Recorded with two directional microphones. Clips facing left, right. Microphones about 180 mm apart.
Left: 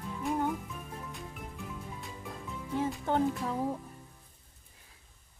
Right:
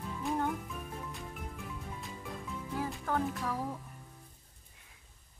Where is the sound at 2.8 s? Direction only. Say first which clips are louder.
Left 5 dB; 25° left (ahead or behind).